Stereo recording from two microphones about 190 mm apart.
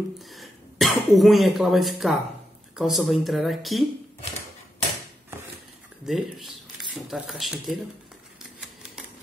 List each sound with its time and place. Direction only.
0.3 s speech: centre (ahead or behind)
6.0 s speech: centre (ahead or behind)